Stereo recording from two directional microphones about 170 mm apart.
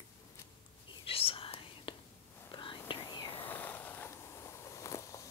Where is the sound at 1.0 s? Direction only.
35° left (ahead or behind).